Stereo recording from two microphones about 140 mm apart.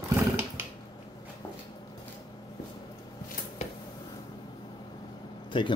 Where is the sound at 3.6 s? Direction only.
55° left (ahead or behind).